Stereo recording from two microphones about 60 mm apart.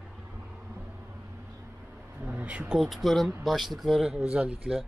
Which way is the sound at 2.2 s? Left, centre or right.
Right.